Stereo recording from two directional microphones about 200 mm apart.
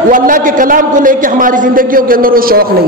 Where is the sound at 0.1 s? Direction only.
40° right (ahead or behind).